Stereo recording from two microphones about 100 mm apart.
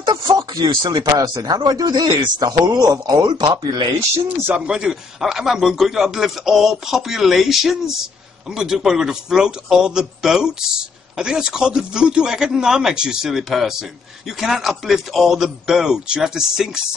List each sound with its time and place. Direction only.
0.0 s speech: 45° right (ahead or behind)
4.6 s a man's voice: 10° right (ahead or behind)